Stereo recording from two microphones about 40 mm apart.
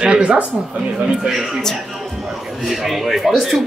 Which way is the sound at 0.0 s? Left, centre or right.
Right.